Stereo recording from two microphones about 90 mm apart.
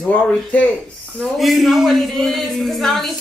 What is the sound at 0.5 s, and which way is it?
Speech, 15° left (ahead or behind).